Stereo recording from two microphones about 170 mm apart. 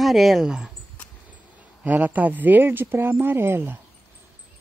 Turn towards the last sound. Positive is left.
turn(degrees=-15)  # may be behind; listen again after turning